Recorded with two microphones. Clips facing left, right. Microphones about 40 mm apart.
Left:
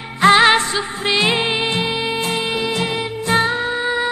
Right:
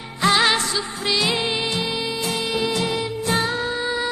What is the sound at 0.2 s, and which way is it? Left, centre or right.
Music, left.